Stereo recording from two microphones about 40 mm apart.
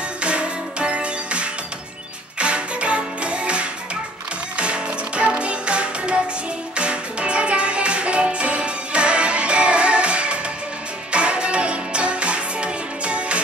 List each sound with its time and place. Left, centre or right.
0.2 s music: right